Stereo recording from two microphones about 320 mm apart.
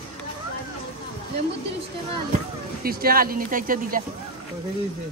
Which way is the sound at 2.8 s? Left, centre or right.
Right.